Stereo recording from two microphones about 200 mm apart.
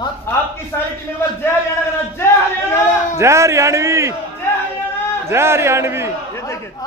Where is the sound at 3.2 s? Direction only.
15° right (ahead or behind).